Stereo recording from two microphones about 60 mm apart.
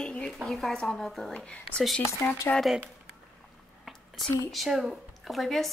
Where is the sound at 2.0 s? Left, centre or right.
Left.